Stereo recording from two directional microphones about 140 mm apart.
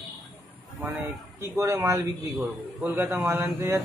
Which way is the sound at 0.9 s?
20° right (ahead or behind).